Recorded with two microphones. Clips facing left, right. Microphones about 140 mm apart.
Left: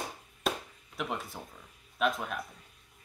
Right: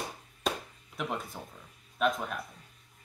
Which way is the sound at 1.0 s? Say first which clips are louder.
Right 1 dB; centre (ahead or behind).